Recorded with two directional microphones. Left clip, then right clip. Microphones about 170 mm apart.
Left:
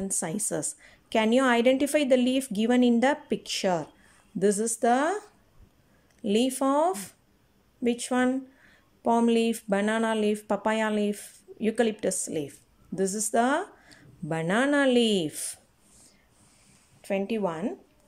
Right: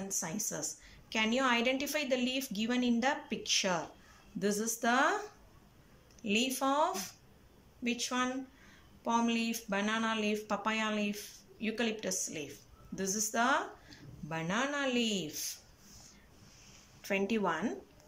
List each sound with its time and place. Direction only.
0.1 s speech: 45° left (ahead or behind)
6.2 s speech: 45° left (ahead or behind)
17.0 s speech: 25° left (ahead or behind)